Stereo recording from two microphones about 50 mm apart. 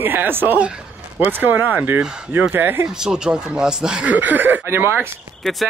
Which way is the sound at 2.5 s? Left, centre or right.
Right.